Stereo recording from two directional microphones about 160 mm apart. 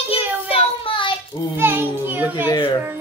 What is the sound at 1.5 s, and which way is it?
Speech, 15° right (ahead or behind).